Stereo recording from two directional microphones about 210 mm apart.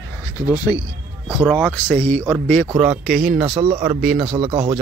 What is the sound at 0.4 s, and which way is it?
Speech, 15° right (ahead or behind).